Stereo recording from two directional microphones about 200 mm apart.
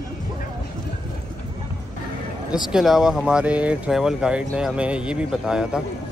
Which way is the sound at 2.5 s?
Centre (ahead or behind).